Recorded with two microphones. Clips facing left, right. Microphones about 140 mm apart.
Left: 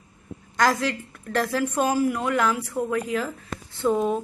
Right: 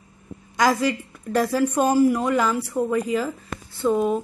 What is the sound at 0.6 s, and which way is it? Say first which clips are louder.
A woman's voice: right 2 dB; 10° right (ahead or behind).